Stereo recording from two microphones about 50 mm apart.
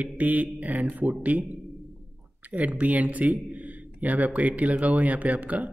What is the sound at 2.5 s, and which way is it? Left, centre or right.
A man's voice, right.